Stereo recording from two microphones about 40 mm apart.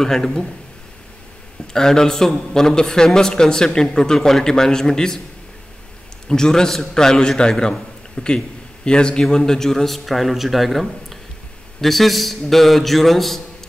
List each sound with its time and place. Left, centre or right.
0.0 s a man's voice: centre
1.7 s a man's voice: centre
6.2 s a man's voice: centre